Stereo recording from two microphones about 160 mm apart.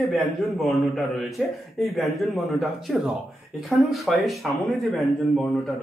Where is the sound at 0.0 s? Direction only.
Centre (ahead or behind).